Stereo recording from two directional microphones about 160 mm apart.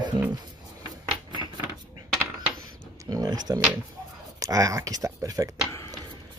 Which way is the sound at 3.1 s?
25° right (ahead or behind).